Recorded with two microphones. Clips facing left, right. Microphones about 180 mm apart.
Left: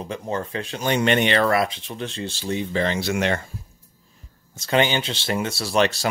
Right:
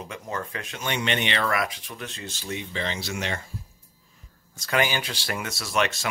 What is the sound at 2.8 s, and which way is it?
Speech, 55° left (ahead or behind).